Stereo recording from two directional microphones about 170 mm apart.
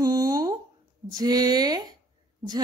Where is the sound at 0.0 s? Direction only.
20° right (ahead or behind).